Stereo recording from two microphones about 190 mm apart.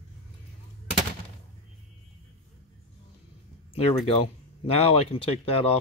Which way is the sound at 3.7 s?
30° left (ahead or behind).